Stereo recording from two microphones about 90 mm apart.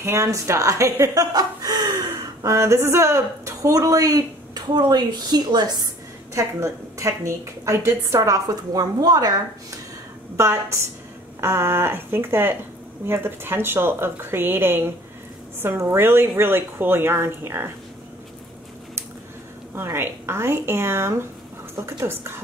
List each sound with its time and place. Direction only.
0.0 s a woman's voice: 30° right (ahead or behind)
2.4 s a woman's voice: 35° right (ahead or behind); by 5.9 s 50° right (ahead or behind)
6.3 s a woman's voice: 35° right (ahead or behind)
10.3 s a woman's voice: 30° right (ahead or behind)
19.7 s a woman's voice: 25° right (ahead or behind)